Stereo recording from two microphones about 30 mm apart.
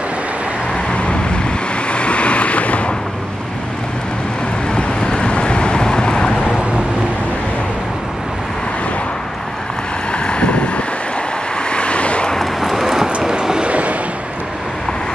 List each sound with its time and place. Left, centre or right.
0.9 s vehicle: left
4.7 s vehicle: left
10.1 s wind noise: left
11.7 s vehicle: left
12.4 s a sound: centre
13.3 s a sound: right
13.7 s vehicle: right